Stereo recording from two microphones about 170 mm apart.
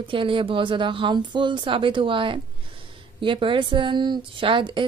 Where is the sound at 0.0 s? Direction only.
30° right (ahead or behind).